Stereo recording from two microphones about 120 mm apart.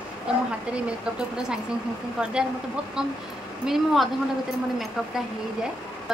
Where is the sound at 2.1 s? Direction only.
5° right (ahead or behind).